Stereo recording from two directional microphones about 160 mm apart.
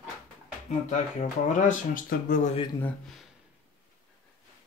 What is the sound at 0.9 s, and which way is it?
Speech, 50° left (ahead or behind).